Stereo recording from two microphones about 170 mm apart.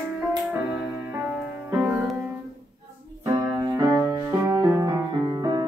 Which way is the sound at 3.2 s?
20° right (ahead or behind).